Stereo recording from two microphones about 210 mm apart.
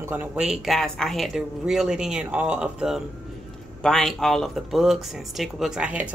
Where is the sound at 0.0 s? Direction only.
10° right (ahead or behind).